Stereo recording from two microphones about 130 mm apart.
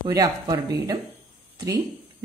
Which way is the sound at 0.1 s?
30° right (ahead or behind).